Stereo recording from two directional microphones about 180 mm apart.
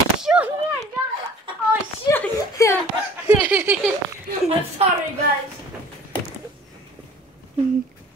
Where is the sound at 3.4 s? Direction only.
10° right (ahead or behind).